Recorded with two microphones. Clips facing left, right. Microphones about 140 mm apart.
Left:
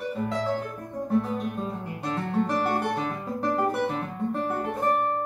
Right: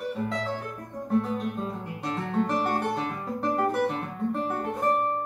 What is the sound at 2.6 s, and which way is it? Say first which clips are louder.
Guitar: left 1 dB; 5° left (ahead or behind).